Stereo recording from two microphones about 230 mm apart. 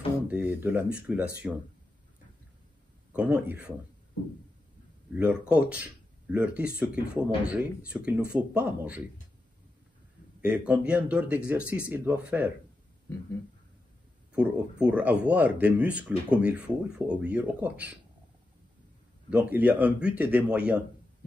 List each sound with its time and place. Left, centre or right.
0.3 s speech: centre
3.1 s speech: centre
5.1 s speech: centre
10.4 s speech: centre
14.3 s speech: centre
19.3 s speech: centre